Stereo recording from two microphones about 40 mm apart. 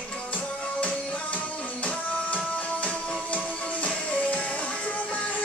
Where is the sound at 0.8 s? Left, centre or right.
Left.